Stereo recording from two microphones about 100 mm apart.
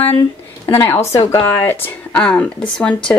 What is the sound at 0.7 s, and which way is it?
Speech, 25° left (ahead or behind).